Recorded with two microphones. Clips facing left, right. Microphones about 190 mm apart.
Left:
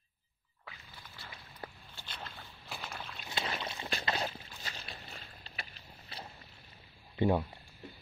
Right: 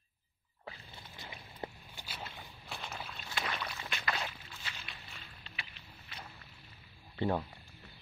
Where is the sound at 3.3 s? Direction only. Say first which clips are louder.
Left 2 dB; 25° left (ahead or behind).